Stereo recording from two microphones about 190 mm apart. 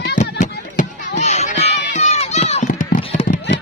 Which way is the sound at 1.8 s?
40° left (ahead or behind).